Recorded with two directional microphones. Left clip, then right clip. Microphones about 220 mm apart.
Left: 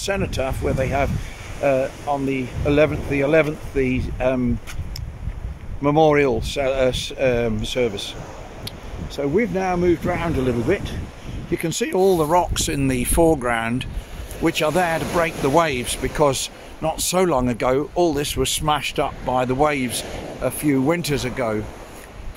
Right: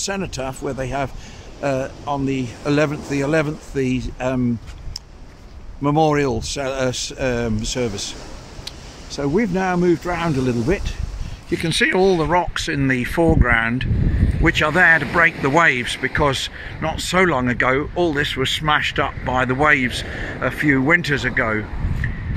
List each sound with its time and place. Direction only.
0.0 s speech: 5° right (ahead or behind)
5.8 s speech: 5° right (ahead or behind)